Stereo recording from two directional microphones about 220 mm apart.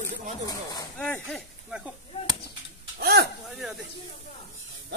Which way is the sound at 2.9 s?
45° right (ahead or behind).